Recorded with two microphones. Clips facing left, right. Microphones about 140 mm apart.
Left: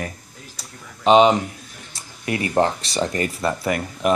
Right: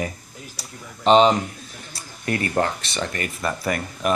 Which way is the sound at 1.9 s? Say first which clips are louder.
Even; 15° left (ahead or behind).